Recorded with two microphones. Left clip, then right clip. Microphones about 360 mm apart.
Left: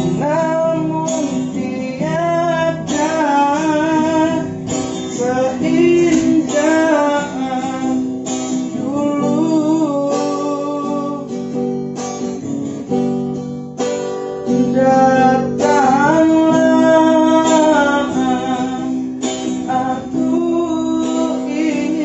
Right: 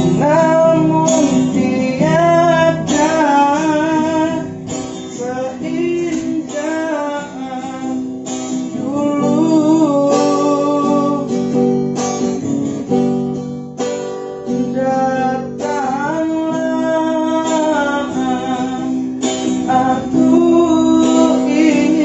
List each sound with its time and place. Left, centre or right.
0.0 s music: right
3.0 s music: right; by 4.4 s centre
5.4 s music: left
8.9 s music: centre; by 11.8 s right
12.9 s music: right
14.5 s music: left; by 18.4 s centre
19.7 s music: right